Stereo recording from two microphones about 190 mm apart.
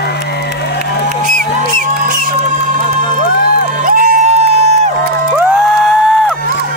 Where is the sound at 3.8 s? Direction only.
45° right (ahead or behind).